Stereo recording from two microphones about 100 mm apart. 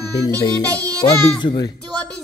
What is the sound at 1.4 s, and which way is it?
Speech, 45° left (ahead or behind).